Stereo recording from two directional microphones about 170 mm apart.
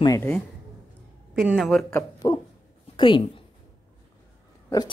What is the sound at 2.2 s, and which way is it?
Speech, 25° left (ahead or behind).